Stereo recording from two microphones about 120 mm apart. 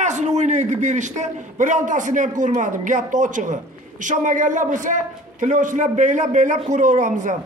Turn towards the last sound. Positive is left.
turn(degrees=-90)